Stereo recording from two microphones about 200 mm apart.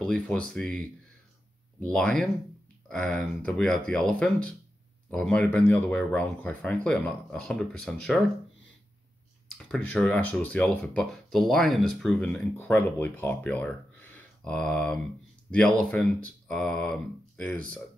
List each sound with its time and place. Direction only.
0.0 s speech: 5° left (ahead or behind)
9.6 s speech: 5° left (ahead or behind)